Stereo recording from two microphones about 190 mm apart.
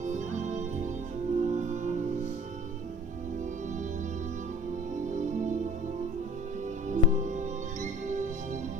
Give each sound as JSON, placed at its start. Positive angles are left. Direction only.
{"t": 0.0, "sound": "music", "side_deg": -40}
{"t": 4.9, "sound": "music", "side_deg": -40}
{"t": 6.9, "sound": "music", "side_deg": -40}